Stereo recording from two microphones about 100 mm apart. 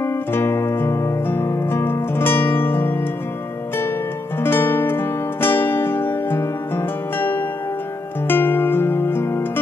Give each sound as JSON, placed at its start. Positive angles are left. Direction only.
{"t": 0.0, "sound": "music", "side_deg": 25}
{"t": 4.4, "sound": "music", "side_deg": 20}